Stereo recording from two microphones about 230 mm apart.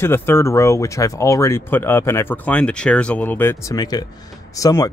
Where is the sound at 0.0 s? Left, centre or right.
Centre.